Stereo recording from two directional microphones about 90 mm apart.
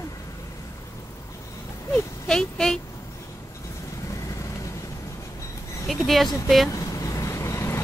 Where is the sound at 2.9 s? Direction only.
35° left (ahead or behind).